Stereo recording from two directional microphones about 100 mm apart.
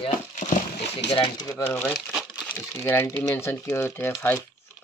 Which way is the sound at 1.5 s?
20° left (ahead or behind).